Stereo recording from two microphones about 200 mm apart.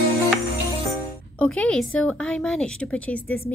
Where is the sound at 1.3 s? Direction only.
5° left (ahead or behind).